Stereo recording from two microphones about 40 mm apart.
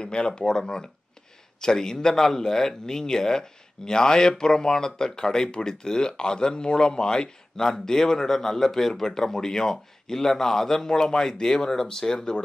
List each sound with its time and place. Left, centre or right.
0.0 s speech: left